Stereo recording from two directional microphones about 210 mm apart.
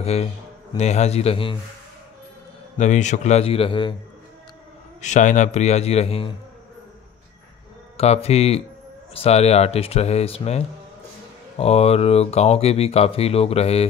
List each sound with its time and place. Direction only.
0.0 s a man's voice: 30° left (ahead or behind)
2.8 s a man's voice: 35° left (ahead or behind)
5.0 s a man's voice: 35° left (ahead or behind)
8.0 s speech: 30° left (ahead or behind)